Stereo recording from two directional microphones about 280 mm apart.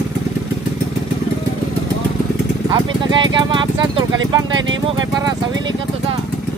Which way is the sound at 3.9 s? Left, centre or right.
Right.